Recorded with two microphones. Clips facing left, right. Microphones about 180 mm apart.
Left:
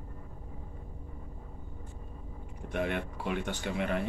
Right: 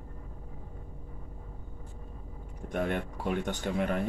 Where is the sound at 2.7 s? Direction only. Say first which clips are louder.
Right 1 dB; 45° right (ahead or behind).